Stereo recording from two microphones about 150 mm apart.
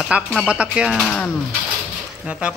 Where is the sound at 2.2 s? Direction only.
5° right (ahead or behind).